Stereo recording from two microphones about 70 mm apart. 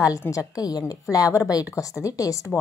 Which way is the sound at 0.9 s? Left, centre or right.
Left.